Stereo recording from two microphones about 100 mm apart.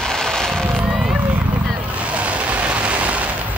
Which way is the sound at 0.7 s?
15° right (ahead or behind).